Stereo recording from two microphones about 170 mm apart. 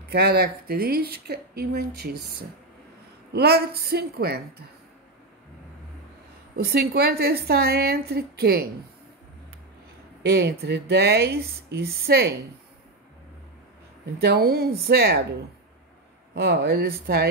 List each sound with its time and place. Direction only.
0.1 s speech: 70° right (ahead or behind)
3.3 s speech: 70° right (ahead or behind)
6.5 s speech: 70° right (ahead or behind)
10.2 s speech: 75° right (ahead or behind)
14.2 s a woman's voice: 65° right (ahead or behind)
16.3 s speech: 70° right (ahead or behind)